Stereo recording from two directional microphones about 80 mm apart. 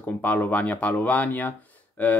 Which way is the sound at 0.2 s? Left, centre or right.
Centre.